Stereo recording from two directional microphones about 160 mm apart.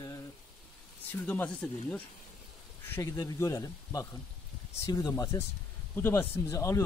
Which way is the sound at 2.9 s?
20° left (ahead or behind).